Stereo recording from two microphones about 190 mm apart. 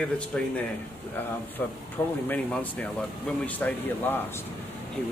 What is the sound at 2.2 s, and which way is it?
Speech, 10° left (ahead or behind).